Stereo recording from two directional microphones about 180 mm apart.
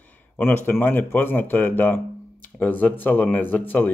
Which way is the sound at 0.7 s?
10° left (ahead or behind).